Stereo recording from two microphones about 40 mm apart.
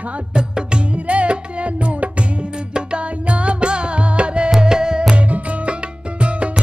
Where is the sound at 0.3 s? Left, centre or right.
Right.